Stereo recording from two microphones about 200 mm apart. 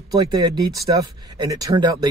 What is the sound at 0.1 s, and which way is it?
Speech, 20° right (ahead or behind).